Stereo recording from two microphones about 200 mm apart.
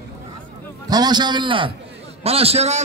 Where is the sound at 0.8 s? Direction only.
20° right (ahead or behind).